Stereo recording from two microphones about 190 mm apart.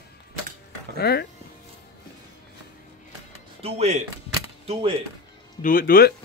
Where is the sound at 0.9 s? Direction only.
55° left (ahead or behind).